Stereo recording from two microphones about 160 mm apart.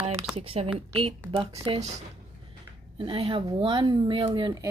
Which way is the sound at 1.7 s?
45° right (ahead or behind).